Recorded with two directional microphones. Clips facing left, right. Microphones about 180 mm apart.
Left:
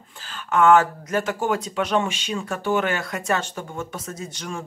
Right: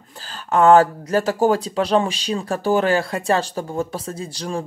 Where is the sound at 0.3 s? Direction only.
35° right (ahead or behind).